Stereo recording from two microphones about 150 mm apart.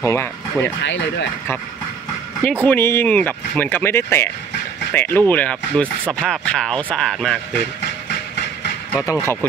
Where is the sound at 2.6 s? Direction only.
15° left (ahead or behind).